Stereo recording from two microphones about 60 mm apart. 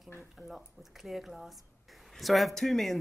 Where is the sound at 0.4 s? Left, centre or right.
Centre.